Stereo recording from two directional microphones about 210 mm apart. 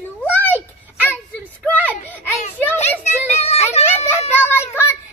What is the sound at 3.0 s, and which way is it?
Children playing, 30° left (ahead or behind).